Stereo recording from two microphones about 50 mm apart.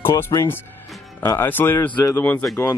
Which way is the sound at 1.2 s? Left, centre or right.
Left.